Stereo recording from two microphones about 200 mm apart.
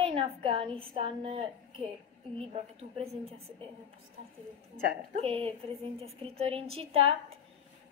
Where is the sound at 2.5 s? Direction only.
30° right (ahead or behind).